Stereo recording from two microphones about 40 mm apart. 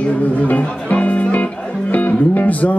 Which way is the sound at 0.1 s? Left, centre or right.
Left.